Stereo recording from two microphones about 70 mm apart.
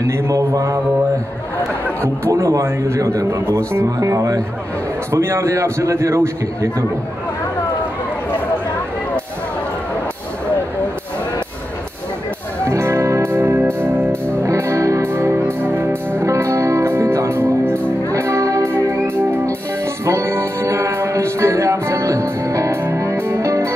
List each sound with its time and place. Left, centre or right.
0.0 s speech: right
2.2 s speech: right
5.1 s speech: right
12.6 s music: right
14.4 s music: right
16.3 s music: right